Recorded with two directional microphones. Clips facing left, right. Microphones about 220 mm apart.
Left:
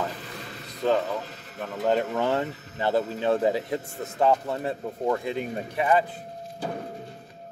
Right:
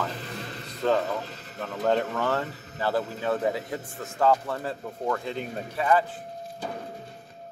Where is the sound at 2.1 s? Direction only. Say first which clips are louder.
Left 2 dB; 20° left (ahead or behind).